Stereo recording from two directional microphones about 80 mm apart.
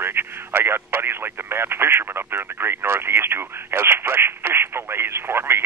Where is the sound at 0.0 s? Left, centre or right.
Right.